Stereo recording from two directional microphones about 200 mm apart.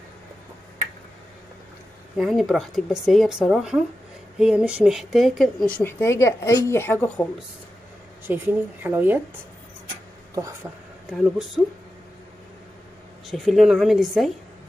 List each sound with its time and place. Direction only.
2.1 s speech: centre (ahead or behind)
5.8 s a woman's voice: 10° left (ahead or behind)
8.3 s speech: 10° right (ahead or behind)
10.3 s speech: 15° right (ahead or behind)
11.6 s speech: 5° right (ahead or behind)
13.3 s speech: centre (ahead or behind)